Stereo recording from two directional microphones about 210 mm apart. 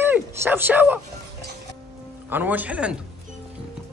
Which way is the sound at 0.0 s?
10° right (ahead or behind).